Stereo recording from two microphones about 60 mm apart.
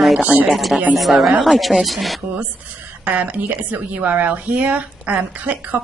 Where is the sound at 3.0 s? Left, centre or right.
Right.